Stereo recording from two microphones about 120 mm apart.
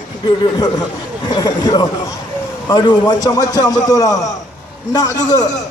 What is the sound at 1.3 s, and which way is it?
Speech, 35° left (ahead or behind).